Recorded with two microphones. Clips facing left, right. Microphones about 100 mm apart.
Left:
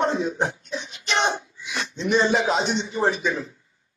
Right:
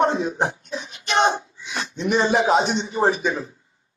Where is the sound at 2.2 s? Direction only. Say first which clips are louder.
Right 4 dB; 45° right (ahead or behind).